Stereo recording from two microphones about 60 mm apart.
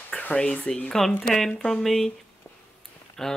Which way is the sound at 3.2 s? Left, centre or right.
Centre.